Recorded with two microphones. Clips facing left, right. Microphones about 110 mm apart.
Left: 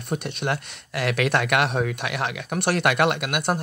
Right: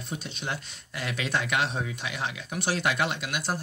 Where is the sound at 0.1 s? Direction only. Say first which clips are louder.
Left 9 dB; 60° left (ahead or behind).